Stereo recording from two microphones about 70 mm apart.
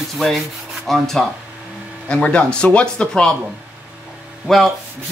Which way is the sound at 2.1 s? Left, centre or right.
Centre.